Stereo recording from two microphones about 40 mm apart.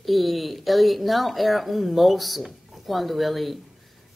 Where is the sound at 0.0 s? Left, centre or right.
Centre.